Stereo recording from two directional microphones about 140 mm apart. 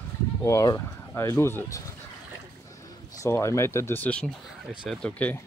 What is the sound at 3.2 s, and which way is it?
Speech, 20° left (ahead or behind).